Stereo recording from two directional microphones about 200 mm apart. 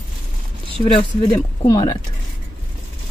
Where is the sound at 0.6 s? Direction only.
30° left (ahead or behind).